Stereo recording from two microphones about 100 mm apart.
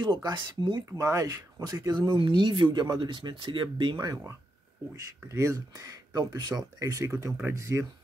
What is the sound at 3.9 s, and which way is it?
Speech, 25° right (ahead or behind).